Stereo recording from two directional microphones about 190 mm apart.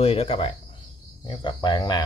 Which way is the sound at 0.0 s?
30° left (ahead or behind).